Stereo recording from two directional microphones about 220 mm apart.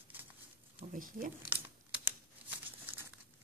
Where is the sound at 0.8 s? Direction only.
35° right (ahead or behind).